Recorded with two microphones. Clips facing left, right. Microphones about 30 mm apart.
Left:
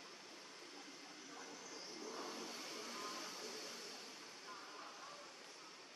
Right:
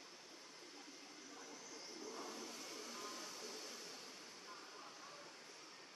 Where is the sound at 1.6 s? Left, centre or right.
Left.